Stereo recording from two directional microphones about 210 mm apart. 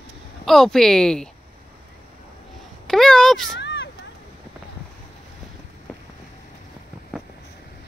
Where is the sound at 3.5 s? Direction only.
55° left (ahead or behind).